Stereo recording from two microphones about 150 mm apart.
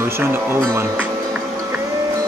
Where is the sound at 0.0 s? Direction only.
15° right (ahead or behind).